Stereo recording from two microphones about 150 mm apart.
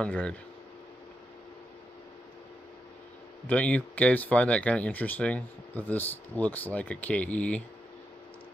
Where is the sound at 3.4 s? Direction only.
10° left (ahead or behind).